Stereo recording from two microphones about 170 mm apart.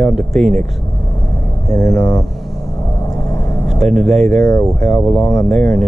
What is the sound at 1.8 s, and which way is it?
Speech, centre (ahead or behind).